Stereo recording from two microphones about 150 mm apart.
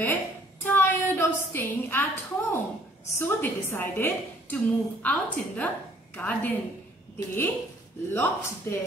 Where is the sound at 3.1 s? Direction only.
15° left (ahead or behind).